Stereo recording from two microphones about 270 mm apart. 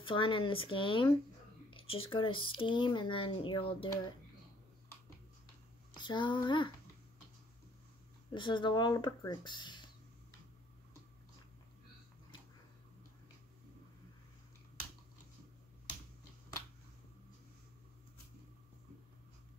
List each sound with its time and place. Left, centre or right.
0.0 s speech: centre
5.9 s speech: centre
8.3 s speech: centre